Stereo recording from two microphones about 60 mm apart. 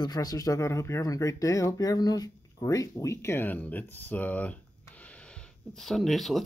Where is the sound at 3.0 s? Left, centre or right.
Left.